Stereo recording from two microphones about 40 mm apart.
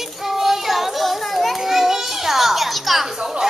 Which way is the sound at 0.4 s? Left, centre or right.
Centre.